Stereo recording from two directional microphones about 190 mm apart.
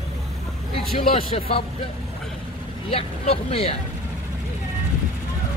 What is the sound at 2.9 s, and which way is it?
Speech, 30° left (ahead or behind).